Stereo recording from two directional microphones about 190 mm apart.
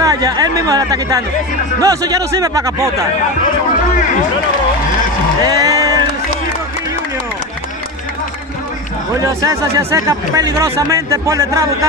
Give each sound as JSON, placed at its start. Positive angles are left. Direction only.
{"t": 0.0, "sound": "speech", "side_deg": -20}
{"t": 5.4, "sound": "speech", "side_deg": -20}
{"t": 9.1, "sound": "speech", "side_deg": -15}